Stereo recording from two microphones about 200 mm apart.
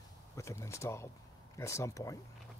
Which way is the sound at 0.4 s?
15° left (ahead or behind).